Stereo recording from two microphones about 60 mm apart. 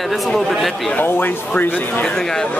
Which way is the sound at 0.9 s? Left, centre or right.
Left.